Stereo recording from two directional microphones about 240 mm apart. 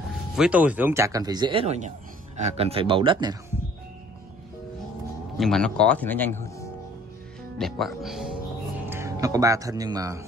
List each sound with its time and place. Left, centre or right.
0.4 s speech: centre
5.4 s speech: centre
7.5 s speech: centre